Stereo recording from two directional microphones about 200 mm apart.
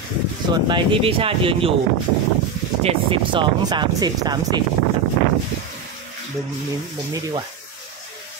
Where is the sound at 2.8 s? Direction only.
25° right (ahead or behind).